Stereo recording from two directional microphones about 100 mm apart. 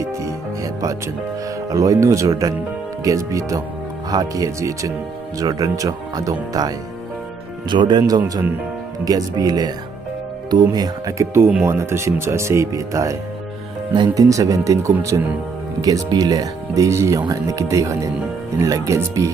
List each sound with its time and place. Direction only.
0.7 s speech: 35° right (ahead or behind)
7.7 s speech: 50° right (ahead or behind)
9.0 s speech: 40° right (ahead or behind)
15.8 s speech: 40° right (ahead or behind)